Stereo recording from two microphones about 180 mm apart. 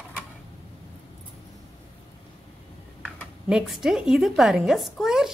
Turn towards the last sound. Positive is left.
turn(degrees=0)  # may be behind; listen again after turning